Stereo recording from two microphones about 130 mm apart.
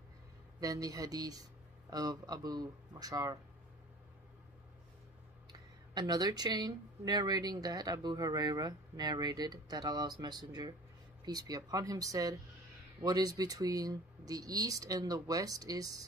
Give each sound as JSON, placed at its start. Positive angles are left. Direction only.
{"t": 0.6, "sound": "speech", "side_deg": -30}
{"t": 5.5, "sound": "speech", "side_deg": -30}